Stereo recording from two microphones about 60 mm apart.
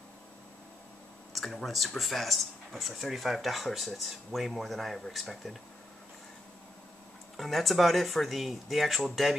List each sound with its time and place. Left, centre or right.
1.3 s speech: centre
7.3 s speech: centre